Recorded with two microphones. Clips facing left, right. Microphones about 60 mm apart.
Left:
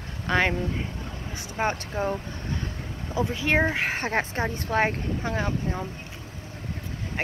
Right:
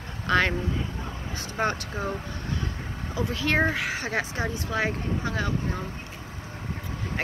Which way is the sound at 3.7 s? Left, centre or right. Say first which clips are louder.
Left 2 dB; left.